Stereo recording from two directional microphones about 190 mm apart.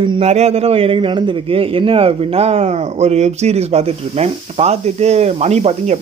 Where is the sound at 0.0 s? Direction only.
30° right (ahead or behind).